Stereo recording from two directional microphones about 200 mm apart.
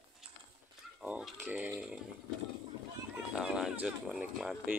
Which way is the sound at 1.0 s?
5° right (ahead or behind).